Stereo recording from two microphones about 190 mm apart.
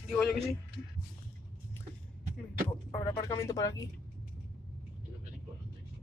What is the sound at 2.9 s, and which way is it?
Speech, 20° left (ahead or behind).